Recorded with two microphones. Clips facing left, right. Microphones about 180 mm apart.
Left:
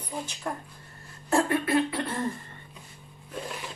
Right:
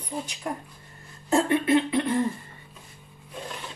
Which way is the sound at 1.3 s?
20° right (ahead or behind).